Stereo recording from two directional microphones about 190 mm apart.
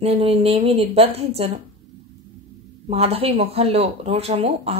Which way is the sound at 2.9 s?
30° right (ahead or behind).